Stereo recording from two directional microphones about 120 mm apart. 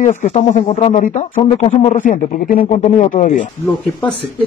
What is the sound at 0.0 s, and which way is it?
Speech, 90° left.